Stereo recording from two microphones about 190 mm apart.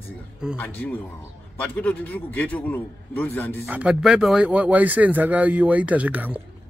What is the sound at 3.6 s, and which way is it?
Speech, 5° right (ahead or behind).